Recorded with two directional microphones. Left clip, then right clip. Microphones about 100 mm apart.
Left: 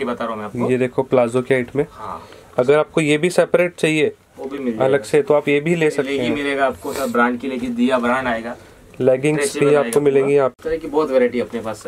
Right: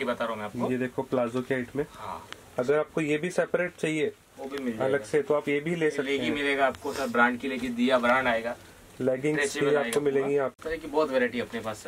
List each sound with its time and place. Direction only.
0.0 s speech: centre (ahead or behind)
0.7 s speech: 25° left (ahead or behind); by 8.5 s centre (ahead or behind)
9.0 s speech: 15° left (ahead or behind)
10.7 s speech: 5° left (ahead or behind)